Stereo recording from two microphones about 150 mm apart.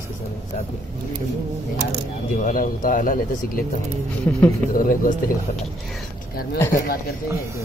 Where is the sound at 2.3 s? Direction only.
65° left (ahead or behind).